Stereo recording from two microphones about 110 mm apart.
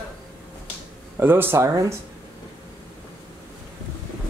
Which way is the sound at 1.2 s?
20° right (ahead or behind).